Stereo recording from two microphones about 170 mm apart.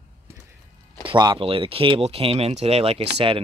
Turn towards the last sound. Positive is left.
turn(degrees=-35)  # may be behind; listen again after turning